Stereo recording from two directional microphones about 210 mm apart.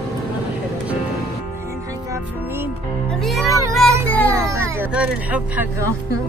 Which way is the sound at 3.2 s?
Centre (ahead or behind).